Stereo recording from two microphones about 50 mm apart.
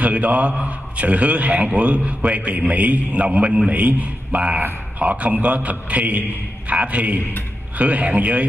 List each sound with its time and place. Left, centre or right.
0.0 s a man's voice: right